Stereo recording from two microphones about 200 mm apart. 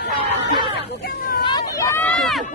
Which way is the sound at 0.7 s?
50° left (ahead or behind).